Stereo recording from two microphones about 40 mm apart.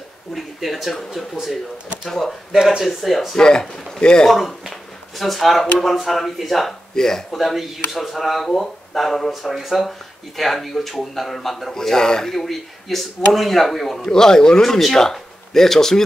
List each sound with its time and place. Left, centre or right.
0.3 s speech: centre
2.0 s speech: centre
2.5 s speech: centre
2.8 s speech: centre
3.3 s speech: left
4.3 s speech: centre
4.6 s a sound: centre
5.8 s speech: centre
7.0 s speech: centre
7.3 s speech: centre